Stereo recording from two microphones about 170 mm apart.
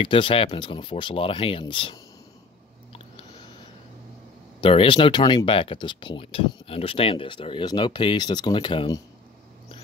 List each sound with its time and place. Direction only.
0.0 s speech: 30° left (ahead or behind)
4.6 s speech: 30° left (ahead or behind)